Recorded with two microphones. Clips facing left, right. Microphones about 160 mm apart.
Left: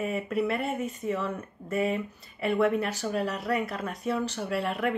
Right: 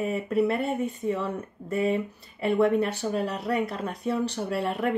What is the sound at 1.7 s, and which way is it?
Speech, 30° right (ahead or behind).